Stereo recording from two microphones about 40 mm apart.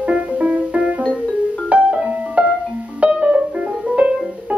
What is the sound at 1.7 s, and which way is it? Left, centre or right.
Music, right.